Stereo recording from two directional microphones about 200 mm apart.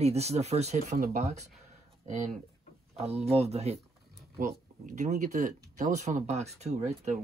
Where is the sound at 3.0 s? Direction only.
30° right (ahead or behind).